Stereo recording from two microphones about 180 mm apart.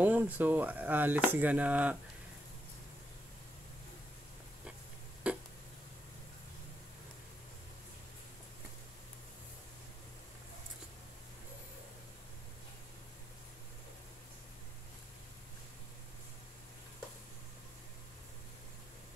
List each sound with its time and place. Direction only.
0.0 s sheep: 10° right (ahead or behind)
0.4 s speech: 10° right (ahead or behind)
5.2 s a sound: 5° right (ahead or behind)